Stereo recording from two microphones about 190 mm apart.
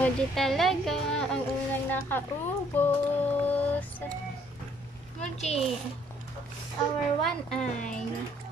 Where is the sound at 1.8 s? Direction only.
10° left (ahead or behind).